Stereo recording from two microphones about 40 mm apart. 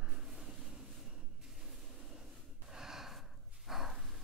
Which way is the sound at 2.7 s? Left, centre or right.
Centre.